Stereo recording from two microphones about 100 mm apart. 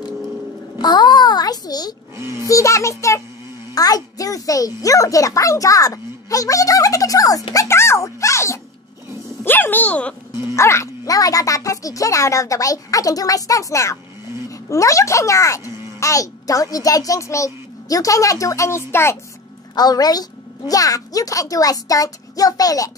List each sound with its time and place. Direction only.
0.7 s a sound: 45° left (ahead or behind)
2.1 s a child's voice: 25° right (ahead or behind)
2.4 s a child's voice: 35° left (ahead or behind)
9.4 s speech: 20° left (ahead or behind)
10.5 s a child's voice: 30° left (ahead or behind)
19.7 s a child's voice: 40° left (ahead or behind)